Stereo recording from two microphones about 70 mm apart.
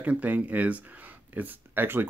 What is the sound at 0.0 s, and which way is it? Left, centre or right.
Speech, right.